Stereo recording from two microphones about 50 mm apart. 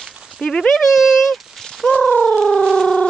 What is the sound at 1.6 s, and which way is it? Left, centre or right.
Bird, centre.